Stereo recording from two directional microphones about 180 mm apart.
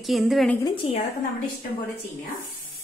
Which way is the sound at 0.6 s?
25° left (ahead or behind).